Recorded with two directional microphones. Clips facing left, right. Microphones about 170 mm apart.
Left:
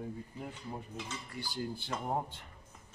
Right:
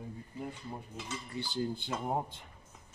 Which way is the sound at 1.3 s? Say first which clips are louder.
Right 4 dB; 25° right (ahead or behind).